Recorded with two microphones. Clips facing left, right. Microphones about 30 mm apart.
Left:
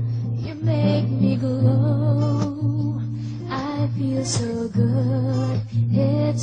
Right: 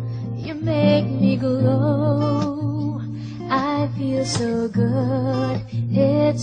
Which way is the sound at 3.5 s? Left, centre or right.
Right.